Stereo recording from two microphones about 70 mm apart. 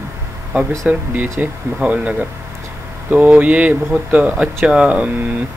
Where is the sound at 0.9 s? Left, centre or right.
Right.